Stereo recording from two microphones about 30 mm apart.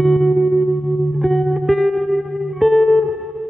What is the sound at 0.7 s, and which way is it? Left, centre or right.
Music, left.